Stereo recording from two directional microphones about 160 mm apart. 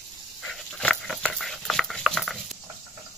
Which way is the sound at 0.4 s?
5° left (ahead or behind).